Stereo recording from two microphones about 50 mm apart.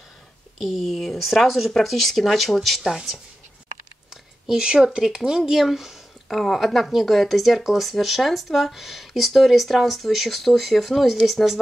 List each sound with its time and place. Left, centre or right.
0.6 s speech: centre
4.1 s speech: centre
6.2 s speech: centre